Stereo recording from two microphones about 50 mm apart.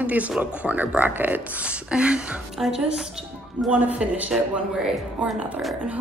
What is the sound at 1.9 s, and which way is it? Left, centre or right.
Speech, right.